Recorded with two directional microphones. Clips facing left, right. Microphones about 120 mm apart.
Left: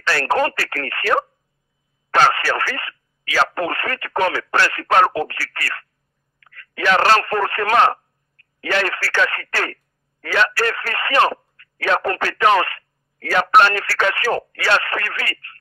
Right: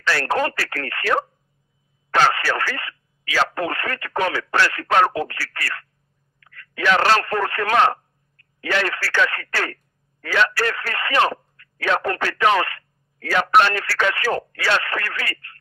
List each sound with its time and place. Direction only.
0.0 s speech: 50° left (ahead or behind)